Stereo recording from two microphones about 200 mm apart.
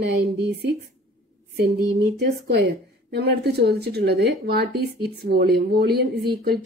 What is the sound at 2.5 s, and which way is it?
A woman's voice, 55° right (ahead or behind).